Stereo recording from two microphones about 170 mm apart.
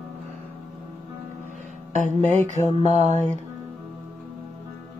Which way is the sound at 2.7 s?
40° right (ahead or behind).